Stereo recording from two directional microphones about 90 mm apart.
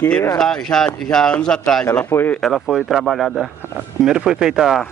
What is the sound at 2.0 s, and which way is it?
Speech, 25° left (ahead or behind).